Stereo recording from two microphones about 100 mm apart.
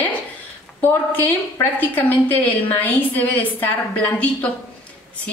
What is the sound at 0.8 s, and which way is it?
A woman's voice, 20° left (ahead or behind).